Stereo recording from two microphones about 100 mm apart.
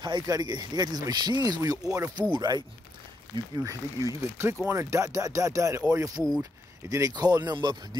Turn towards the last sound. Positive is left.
turn(degrees=-45)  # may be behind; listen again after turning